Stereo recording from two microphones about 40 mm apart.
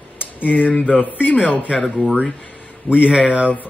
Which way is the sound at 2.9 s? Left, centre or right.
Right.